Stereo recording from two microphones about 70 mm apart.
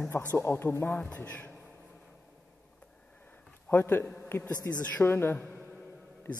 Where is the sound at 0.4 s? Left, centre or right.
Left.